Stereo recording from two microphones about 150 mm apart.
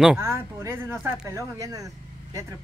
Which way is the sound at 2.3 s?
20° right (ahead or behind).